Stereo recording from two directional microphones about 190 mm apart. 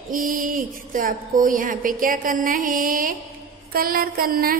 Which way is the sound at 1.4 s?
45° right (ahead or behind).